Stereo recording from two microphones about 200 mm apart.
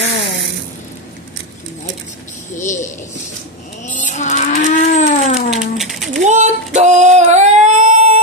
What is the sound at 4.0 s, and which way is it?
Livestock, 35° left (ahead or behind).